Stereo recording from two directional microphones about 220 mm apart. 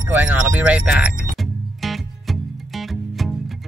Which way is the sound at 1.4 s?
Centre (ahead or behind).